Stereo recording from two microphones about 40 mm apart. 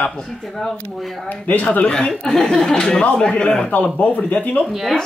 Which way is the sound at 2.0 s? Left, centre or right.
Centre.